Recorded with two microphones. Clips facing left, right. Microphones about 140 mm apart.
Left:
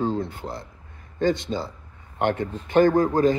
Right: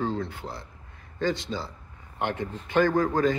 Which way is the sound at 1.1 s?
50° left (ahead or behind).